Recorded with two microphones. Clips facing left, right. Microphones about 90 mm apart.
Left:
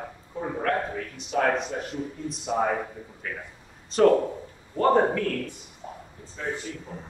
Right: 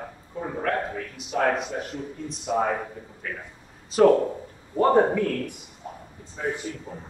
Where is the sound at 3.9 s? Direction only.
5° right (ahead or behind).